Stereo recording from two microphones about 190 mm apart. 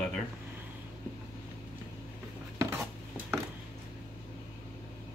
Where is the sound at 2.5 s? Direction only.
15° right (ahead or behind).